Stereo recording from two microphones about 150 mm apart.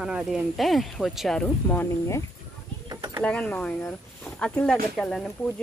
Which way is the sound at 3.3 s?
10° left (ahead or behind).